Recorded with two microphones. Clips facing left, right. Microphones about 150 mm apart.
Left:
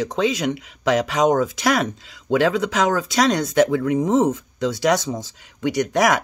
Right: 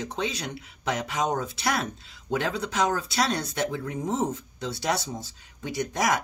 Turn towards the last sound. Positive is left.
turn(degrees=90)